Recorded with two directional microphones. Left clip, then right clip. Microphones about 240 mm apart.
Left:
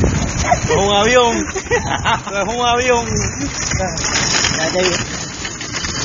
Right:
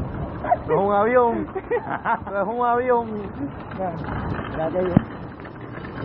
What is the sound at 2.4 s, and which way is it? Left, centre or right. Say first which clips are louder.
Speech: left 5 dB; centre.